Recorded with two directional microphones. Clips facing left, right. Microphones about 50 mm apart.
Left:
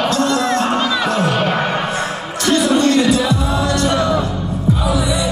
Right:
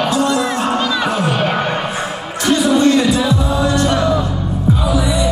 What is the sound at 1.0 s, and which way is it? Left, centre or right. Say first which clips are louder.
Music: even; centre.